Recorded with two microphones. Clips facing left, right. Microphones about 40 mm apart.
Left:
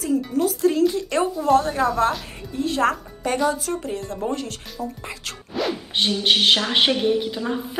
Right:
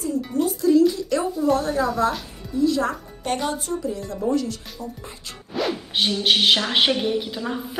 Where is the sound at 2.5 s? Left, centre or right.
Left.